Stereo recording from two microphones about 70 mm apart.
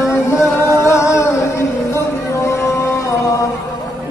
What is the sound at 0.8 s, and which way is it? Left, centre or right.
Music, left.